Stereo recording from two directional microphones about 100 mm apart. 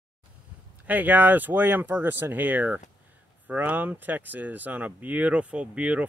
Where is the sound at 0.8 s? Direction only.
15° right (ahead or behind).